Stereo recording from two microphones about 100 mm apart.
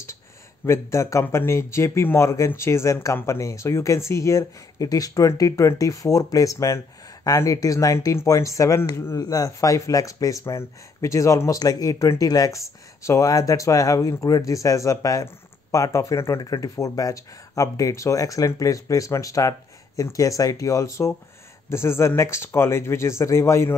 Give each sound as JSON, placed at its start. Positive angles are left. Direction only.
{"t": 0.7, "sound": "speech", "side_deg": 30}